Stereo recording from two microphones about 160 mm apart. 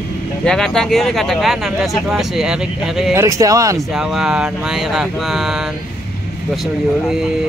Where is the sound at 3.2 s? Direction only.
20° right (ahead or behind).